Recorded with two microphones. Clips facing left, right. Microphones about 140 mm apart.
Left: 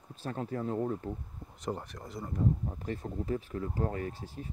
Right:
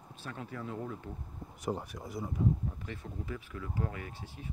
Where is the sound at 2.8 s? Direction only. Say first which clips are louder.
Left 6 dB; 40° left (ahead or behind).